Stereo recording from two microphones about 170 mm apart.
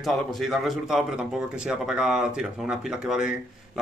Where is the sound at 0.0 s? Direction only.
Centre (ahead or behind).